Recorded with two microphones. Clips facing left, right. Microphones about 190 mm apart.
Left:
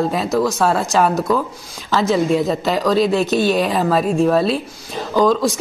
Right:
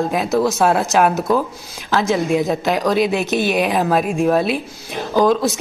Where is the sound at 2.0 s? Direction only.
Centre (ahead or behind).